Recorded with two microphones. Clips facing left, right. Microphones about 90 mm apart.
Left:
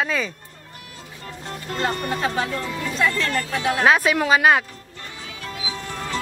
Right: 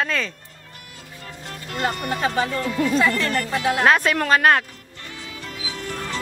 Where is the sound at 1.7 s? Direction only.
5° right (ahead or behind).